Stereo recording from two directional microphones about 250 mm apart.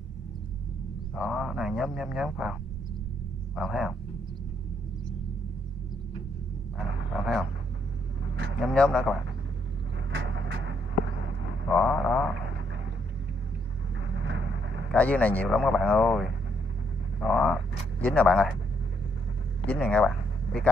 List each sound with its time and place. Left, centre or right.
1.1 s a man's voice: centre
3.5 s a man's voice: centre
7.2 s speech: centre
8.5 s a man's voice: centre
10.1 s vehicle: right
11.7 s a sound: centre
14.1 s a sound: right
14.9 s a man's voice: centre
19.6 s a sound: centre